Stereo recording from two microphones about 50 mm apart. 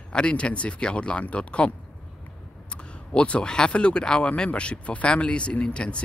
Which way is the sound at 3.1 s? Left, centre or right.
Left.